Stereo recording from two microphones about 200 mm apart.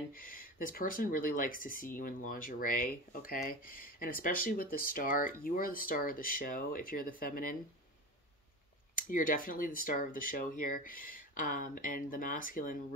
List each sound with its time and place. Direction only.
0.2 s speech: 45° left (ahead or behind)
8.9 s speech: 45° left (ahead or behind)